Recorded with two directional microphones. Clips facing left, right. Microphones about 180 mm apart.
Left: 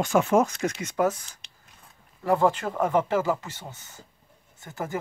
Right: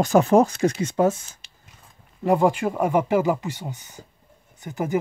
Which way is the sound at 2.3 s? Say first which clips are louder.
Right 3 dB; 15° right (ahead or behind).